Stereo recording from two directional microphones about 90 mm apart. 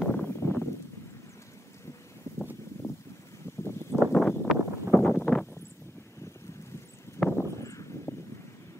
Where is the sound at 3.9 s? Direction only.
5° right (ahead or behind).